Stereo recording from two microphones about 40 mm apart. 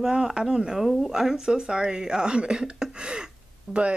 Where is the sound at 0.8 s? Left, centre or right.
Centre.